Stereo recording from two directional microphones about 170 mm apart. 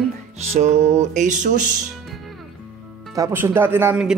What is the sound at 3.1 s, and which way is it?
Speech, 15° right (ahead or behind).